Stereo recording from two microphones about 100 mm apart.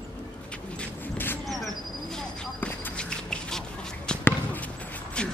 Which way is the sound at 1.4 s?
Centre (ahead or behind).